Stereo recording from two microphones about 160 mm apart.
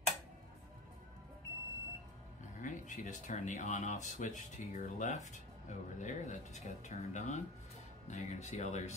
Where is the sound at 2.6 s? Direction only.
50° left (ahead or behind).